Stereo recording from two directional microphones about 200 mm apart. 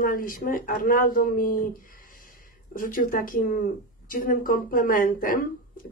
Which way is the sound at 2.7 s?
45° left (ahead or behind).